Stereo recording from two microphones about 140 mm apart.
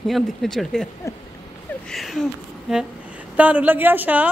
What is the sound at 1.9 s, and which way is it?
A woman's voice, centre (ahead or behind).